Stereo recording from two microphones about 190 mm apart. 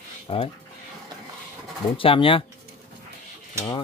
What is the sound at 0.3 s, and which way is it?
Speech, 30° left (ahead or behind).